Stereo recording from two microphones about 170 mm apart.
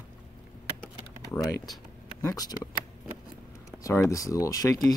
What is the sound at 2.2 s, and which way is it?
Speech, 20° left (ahead or behind).